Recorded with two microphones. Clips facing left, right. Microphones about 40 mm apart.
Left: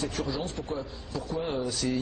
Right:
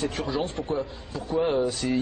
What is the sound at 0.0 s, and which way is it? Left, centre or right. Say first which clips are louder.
A man's voice: right 4 dB; right.